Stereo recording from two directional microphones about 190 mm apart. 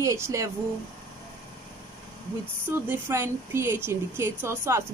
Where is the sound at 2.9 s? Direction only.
15° right (ahead or behind).